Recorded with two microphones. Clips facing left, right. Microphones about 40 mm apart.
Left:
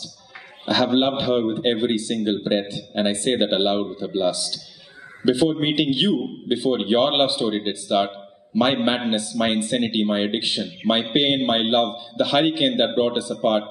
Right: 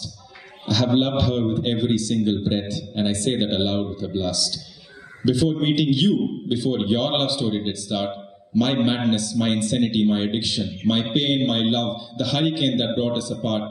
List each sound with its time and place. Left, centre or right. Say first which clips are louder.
0.7 s a man's voice: left 1 dB; left